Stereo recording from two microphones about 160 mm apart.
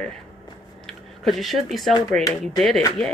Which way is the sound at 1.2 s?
Centre (ahead or behind).